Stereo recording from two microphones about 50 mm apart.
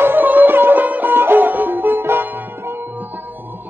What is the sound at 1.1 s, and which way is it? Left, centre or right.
Music, right.